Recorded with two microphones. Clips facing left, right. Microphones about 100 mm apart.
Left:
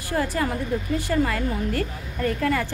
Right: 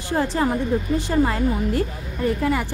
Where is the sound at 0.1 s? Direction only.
25° right (ahead or behind).